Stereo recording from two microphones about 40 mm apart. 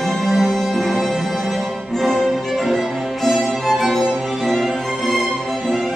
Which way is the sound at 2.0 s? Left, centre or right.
Centre.